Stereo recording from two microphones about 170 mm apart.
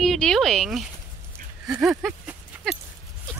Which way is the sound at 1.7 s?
5° right (ahead or behind).